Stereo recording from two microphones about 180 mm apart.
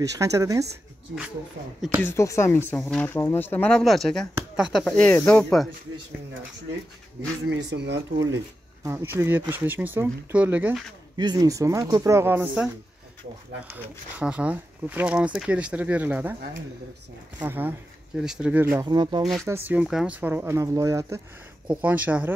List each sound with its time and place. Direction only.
0.2 s speech: 15° right (ahead or behind)
1.6 s speech: 90° right
2.0 s speech: 15° left (ahead or behind)
7.4 s speech: 75° right (ahead or behind)
8.8 s speech: 15° right (ahead or behind)
11.1 s speech: 20° right (ahead or behind)
14.1 s speech: 5° right (ahead or behind)
17.5 s speech: 10° right (ahead or behind)
18.9 s speech: 25° right (ahead or behind)
19.4 s speech: 10° right (ahead or behind)